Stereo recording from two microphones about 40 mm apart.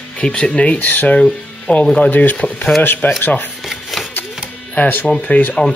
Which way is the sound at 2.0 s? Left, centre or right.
Left.